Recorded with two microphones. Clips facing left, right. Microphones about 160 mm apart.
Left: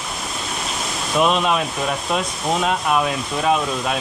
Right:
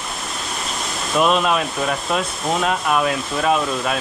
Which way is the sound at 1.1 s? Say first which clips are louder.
Right 1 dB; centre (ahead or behind).